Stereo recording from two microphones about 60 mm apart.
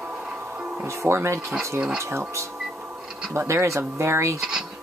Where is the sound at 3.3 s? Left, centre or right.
Right.